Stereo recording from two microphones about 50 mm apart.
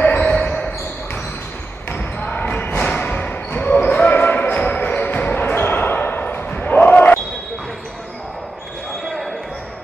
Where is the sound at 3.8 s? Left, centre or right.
Left.